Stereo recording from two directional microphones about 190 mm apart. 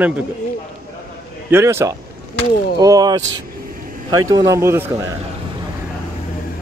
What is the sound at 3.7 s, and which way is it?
Vehicle, 45° right (ahead or behind).